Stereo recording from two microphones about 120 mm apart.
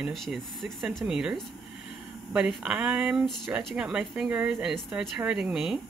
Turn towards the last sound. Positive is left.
turn(degrees=-5)  # may be behind; listen again after turning